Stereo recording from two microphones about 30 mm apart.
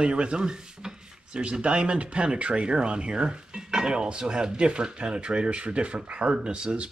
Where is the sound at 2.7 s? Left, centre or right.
Right.